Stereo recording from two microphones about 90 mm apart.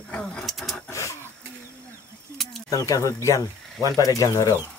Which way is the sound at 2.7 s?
40° left (ahead or behind).